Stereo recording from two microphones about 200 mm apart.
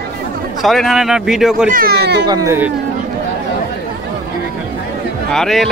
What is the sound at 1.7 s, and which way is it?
Speech, 50° right (ahead or behind).